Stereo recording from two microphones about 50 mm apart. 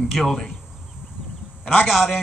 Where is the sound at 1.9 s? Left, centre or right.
Centre.